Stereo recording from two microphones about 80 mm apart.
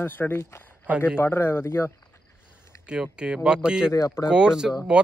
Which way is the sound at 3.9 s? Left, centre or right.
Left.